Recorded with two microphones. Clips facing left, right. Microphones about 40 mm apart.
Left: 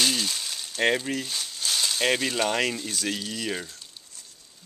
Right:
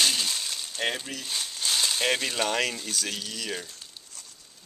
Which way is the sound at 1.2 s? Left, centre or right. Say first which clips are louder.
Even; centre.